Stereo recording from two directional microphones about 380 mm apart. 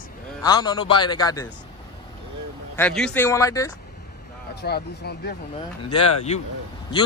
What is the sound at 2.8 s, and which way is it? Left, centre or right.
Speech, centre.